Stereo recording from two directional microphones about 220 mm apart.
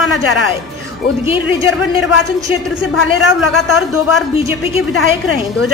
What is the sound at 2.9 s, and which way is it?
A man's voice, 65° left (ahead or behind).